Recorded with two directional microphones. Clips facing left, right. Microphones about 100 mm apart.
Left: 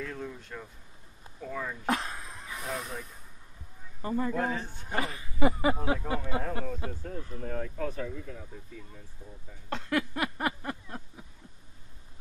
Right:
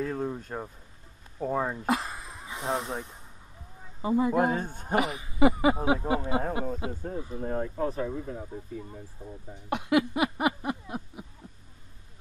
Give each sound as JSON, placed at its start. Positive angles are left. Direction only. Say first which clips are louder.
{"t": 0.0, "sound": "speech", "louder": "right 7 dB", "side_deg": -35}
{"t": 1.9, "sound": "a sound", "louder": "right 2 dB", "side_deg": -5}
{"t": 2.4, "sound": "speech", "louder": "right 6 dB", "side_deg": -25}
{"t": 4.0, "sound": "a man's voice", "louder": "right 6 dB", "side_deg": -15}
{"t": 4.6, "sound": "speech", "louder": "right 5 dB", "side_deg": -45}
{"t": 4.9, "sound": "a sound", "louder": "right 6 dB", "side_deg": -20}
{"t": 6.0, "sound": "speech", "louder": "right 5 dB", "side_deg": -20}
{"t": 7.4, "sound": "speech", "louder": "right 5 dB", "side_deg": -30}
{"t": 9.7, "sound": "a sound", "louder": "right 6 dB", "side_deg": -15}